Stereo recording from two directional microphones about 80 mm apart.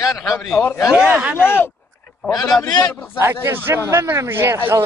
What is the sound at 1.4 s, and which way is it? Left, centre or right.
Speech, left.